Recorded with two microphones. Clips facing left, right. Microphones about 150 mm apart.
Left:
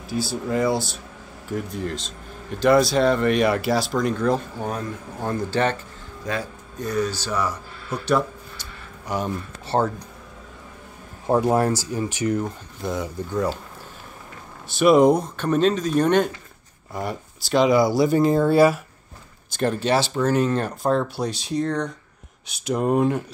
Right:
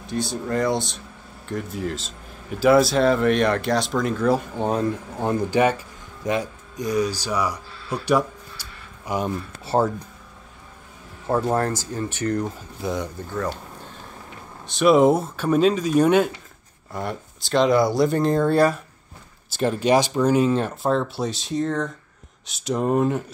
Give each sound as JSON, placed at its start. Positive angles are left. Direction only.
{"t": 0.0, "sound": "speech", "side_deg": 5}
{"t": 4.6, "sound": "speech", "side_deg": -25}
{"t": 11.2, "sound": "speech", "side_deg": 15}
{"t": 14.7, "sound": "speech", "side_deg": 0}